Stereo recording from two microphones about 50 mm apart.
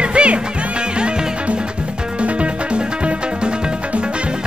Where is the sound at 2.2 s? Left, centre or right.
Right.